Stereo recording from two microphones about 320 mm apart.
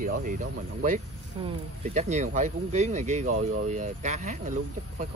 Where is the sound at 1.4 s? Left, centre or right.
Right.